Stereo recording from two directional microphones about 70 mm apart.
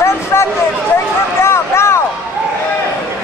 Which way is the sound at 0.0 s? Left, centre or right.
Left.